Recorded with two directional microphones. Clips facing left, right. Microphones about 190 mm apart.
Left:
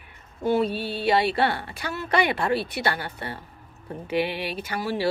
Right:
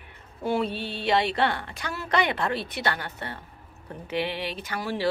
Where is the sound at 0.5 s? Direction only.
40° left (ahead or behind).